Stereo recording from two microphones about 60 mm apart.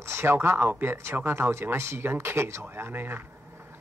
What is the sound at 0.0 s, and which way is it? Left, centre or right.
Speech, right.